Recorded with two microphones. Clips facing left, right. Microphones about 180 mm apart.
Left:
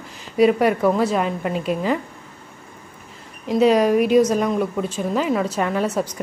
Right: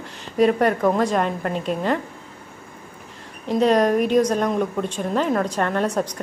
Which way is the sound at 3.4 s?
5° left (ahead or behind).